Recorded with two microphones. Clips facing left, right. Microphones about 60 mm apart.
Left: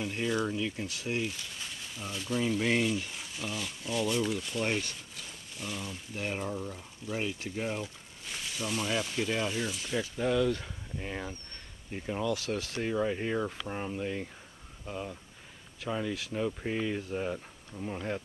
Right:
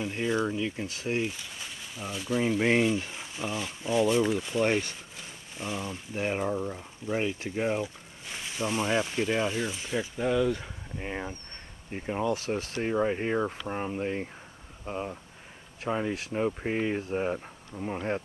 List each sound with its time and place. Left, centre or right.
0.0 s speech: centre
1.3 s speech: centre
2.6 s speech: right